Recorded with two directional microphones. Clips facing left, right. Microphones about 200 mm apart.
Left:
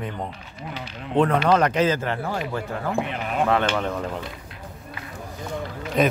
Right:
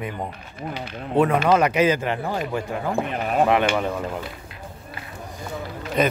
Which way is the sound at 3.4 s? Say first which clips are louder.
Right 2 dB; 15° right (ahead or behind).